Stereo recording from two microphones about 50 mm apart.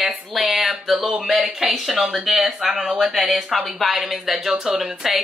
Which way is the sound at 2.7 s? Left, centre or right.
Centre.